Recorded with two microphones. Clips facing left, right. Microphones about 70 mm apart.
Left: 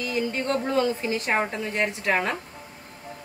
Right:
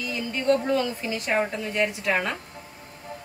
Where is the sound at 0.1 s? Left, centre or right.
Left.